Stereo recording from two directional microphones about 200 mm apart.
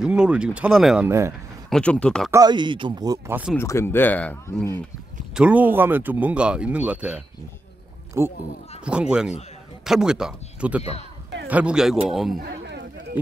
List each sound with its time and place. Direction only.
0.0 s speech: 5° right (ahead or behind)
1.7 s speech: 5° left (ahead or behind)
2.3 s speech: 20° right (ahead or behind)
3.5 s speech: 15° left (ahead or behind)
5.3 s speech: 5° right (ahead or behind)
10.8 s speech: 30° left (ahead or behind)
11.4 s speech: 5° right (ahead or behind)
12.4 s a sound: 55° right (ahead or behind)